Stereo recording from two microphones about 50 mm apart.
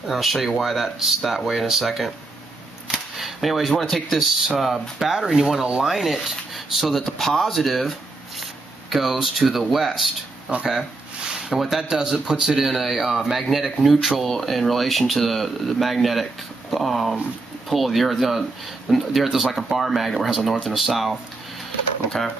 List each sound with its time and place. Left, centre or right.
0.1 s speech: centre
2.9 s a sound: centre
3.7 s speech: centre
8.9 s speech: centre
10.5 s speech: right
11.2 s a sound: centre
11.5 s speech: centre